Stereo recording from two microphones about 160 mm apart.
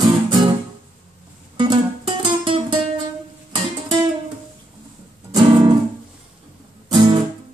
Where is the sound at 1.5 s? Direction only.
30° right (ahead or behind).